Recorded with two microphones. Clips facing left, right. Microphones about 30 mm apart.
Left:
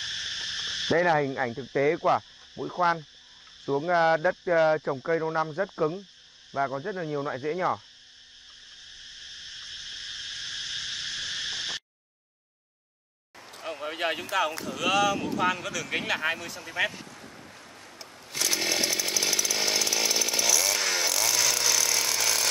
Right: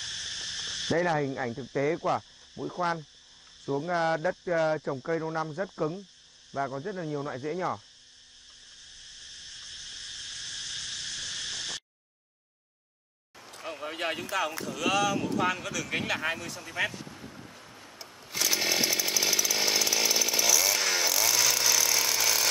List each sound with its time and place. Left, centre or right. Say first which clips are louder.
0.0 s speech: left 4 dB; centre
8.8 s cricket: left 4 dB; centre
13.5 s speech: left 2 dB; centre
17.9 s chainsaw: even; centre